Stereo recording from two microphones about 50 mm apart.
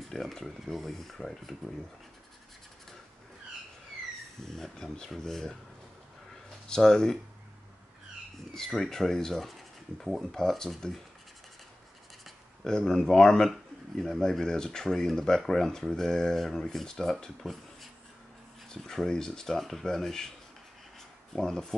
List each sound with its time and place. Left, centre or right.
0.1 s speech: centre
4.5 s speech: centre
6.7 s speech: centre
8.5 s speech: centre
12.6 s speech: centre
18.7 s speech: centre
21.3 s speech: centre